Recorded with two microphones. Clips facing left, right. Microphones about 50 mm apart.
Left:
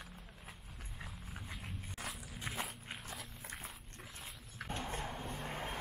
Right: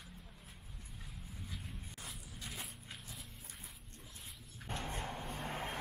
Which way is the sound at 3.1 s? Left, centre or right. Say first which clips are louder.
Left 6 dB; left.